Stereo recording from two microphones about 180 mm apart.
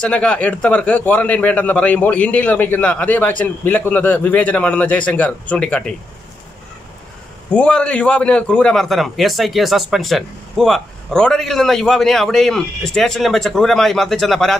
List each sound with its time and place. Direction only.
0.0 s a man's voice: 5° left (ahead or behind)
7.5 s a man's voice: 5° left (ahead or behind)